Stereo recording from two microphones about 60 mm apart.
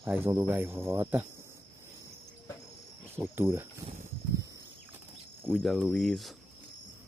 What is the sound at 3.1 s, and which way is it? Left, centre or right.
Cricket, right.